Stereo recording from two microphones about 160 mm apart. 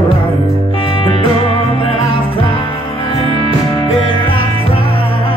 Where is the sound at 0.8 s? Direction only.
35° left (ahead or behind).